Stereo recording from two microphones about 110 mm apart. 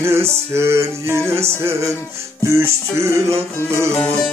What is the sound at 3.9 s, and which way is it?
Music, 15° left (ahead or behind).